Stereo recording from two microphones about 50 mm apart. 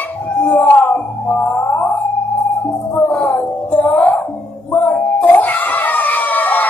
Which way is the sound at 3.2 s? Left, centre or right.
Left.